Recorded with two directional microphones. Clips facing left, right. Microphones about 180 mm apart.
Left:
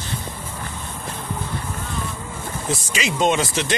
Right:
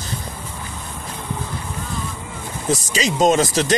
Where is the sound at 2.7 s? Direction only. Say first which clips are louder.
Right 5 dB; 40° right (ahead or behind).